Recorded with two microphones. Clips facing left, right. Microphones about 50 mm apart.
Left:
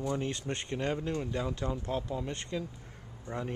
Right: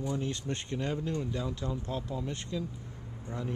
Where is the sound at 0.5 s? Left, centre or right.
Centre.